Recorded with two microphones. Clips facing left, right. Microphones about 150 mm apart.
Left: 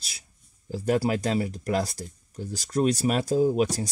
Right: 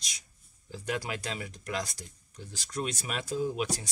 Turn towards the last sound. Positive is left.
turn(degrees=40)  # may be behind; listen again after turning